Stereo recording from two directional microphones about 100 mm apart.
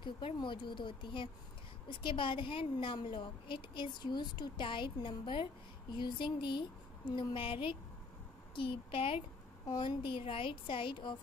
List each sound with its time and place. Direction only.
0.4 s a woman's voice: 55° left (ahead or behind)
9.7 s a woman's voice: 55° left (ahead or behind)